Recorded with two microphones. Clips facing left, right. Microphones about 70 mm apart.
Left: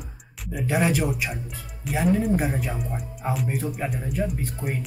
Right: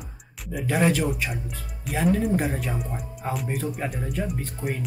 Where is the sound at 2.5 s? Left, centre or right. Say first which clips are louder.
Even; centre.